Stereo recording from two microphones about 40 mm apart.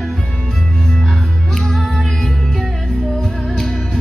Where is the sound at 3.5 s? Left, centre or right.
Centre.